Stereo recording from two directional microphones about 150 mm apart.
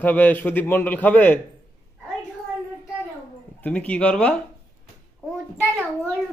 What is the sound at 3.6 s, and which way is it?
Speech, 10° left (ahead or behind).